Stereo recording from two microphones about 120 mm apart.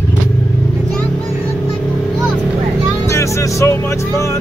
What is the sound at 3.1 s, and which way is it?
Music, 25° left (ahead or behind).